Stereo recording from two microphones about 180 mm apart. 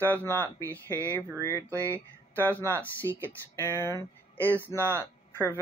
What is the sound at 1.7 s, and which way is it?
Speech, 15° right (ahead or behind).